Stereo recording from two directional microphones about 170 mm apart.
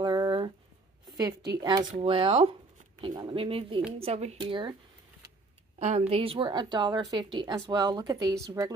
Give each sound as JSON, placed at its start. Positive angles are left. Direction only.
{"t": 0.0, "sound": "a sound", "side_deg": -25}
{"t": 1.1, "sound": "a woman's voice", "side_deg": -20}
{"t": 5.8, "sound": "a woman's voice", "side_deg": -40}